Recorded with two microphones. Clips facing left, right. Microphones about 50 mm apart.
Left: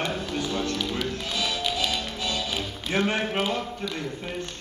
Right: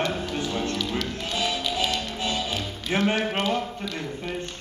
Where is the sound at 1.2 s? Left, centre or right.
Right.